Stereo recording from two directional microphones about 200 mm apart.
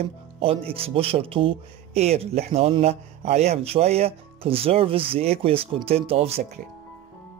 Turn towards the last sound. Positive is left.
turn(degrees=-30)  # may be behind; listen again after turning